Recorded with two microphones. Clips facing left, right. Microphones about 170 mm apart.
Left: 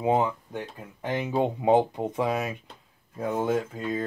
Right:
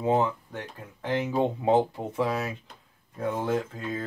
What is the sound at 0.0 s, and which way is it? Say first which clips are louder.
Speech: left 1 dB; 15° left (ahead or behind).